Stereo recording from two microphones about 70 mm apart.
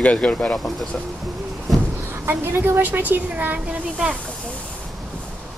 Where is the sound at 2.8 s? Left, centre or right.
Right.